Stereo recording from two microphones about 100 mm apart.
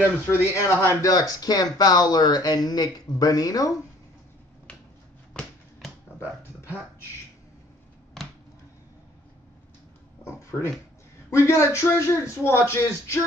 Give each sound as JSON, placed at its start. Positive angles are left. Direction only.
{"t": 0.3, "sound": "a man's voice", "side_deg": 25}
{"t": 1.0, "sound": "speech", "side_deg": 40}
{"t": 5.4, "sound": "finger snapping", "side_deg": 10}
{"t": 10.4, "sound": "a sound", "side_deg": 30}
{"t": 11.2, "sound": "a man's voice", "side_deg": 25}